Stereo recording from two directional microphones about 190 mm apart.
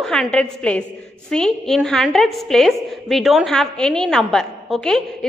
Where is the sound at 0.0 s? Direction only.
5° left (ahead or behind).